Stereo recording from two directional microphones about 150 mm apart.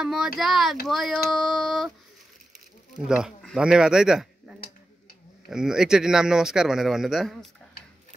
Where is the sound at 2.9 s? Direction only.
5° right (ahead or behind).